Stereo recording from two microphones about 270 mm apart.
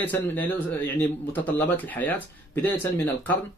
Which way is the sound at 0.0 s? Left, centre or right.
Centre.